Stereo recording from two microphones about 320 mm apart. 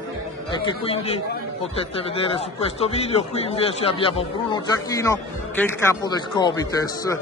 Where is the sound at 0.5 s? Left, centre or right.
Centre.